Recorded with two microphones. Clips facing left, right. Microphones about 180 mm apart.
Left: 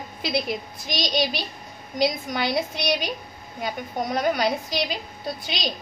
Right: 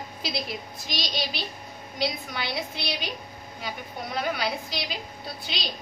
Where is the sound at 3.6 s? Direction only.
45° left (ahead or behind).